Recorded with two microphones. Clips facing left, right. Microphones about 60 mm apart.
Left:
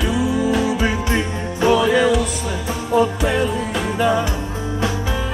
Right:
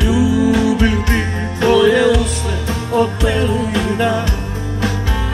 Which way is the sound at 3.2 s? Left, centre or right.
Right.